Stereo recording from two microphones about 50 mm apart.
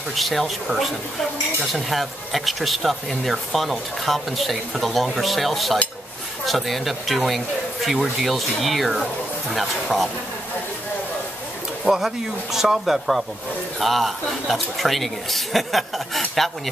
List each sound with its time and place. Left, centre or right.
0.1 s speech: centre
11.8 s speech: centre